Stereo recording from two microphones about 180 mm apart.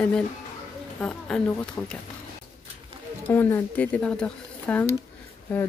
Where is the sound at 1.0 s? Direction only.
5° left (ahead or behind).